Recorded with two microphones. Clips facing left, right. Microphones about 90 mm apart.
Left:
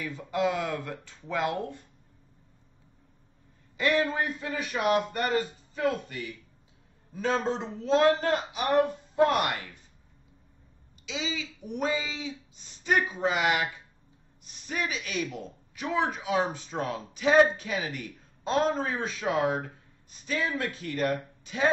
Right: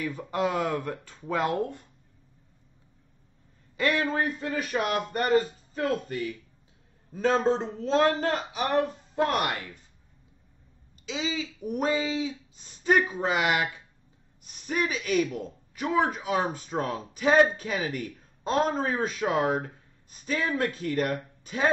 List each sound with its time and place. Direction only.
0.0 s speech: 40° right (ahead or behind)
3.8 s speech: 40° right (ahead or behind)
7.2 s speech: 35° right (ahead or behind)
11.1 s speech: 40° right (ahead or behind)
14.7 s speech: 40° right (ahead or behind)